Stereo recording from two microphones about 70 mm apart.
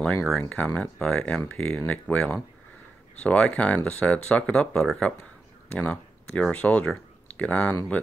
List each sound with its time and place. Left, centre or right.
0.1 s speech: centre
0.4 s speech: centre
5.8 s a sound: centre
6.5 s speech: centre